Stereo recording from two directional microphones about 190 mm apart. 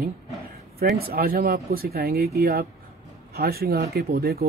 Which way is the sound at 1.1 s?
50° right (ahead or behind).